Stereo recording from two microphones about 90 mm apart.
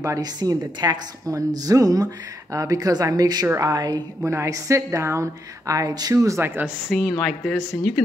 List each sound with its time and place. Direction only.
0.0 s a woman's voice: 40° right (ahead or behind)
4.2 s a woman's voice: 30° right (ahead or behind)
6.4 s speech: 25° right (ahead or behind)
6.9 s a woman's voice: centre (ahead or behind)